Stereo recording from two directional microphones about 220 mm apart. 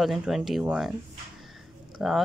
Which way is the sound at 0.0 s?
Centre (ahead or behind).